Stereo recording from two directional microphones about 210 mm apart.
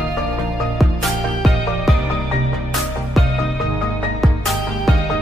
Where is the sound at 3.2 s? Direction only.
Centre (ahead or behind).